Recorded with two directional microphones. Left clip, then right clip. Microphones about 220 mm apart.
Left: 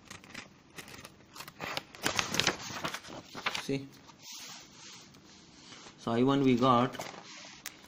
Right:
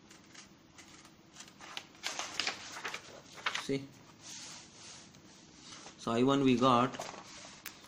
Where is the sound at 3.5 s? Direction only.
30° left (ahead or behind).